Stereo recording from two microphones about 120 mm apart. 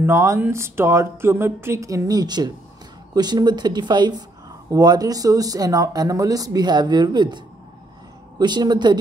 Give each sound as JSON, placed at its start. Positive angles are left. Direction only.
{"t": 0.0, "sound": "speech", "side_deg": -25}
{"t": 8.4, "sound": "speech", "side_deg": -35}